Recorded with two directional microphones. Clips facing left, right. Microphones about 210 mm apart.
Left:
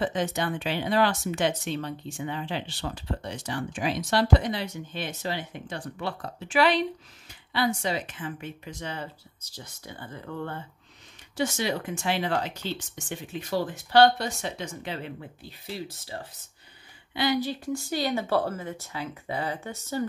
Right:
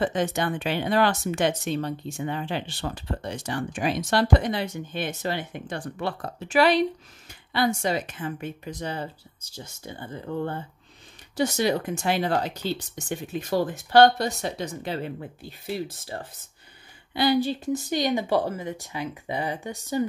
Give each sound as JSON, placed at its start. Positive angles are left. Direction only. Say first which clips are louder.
{"t": 0.0, "sound": "speech", "louder": "right 3 dB", "side_deg": -50}
{"t": 17.4, "sound": "speech", "louder": "right 4 dB", "side_deg": -25}